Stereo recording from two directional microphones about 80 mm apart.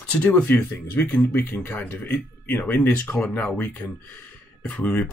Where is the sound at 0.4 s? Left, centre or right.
Centre.